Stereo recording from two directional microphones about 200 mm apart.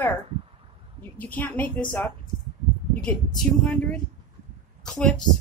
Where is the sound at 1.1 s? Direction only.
10° left (ahead or behind).